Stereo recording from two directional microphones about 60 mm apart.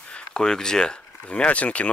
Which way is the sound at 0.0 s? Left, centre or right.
Centre.